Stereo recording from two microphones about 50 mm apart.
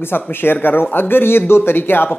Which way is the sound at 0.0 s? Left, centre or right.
Left.